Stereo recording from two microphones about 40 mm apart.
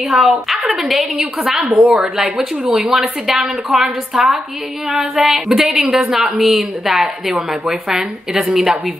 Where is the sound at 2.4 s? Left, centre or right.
Centre.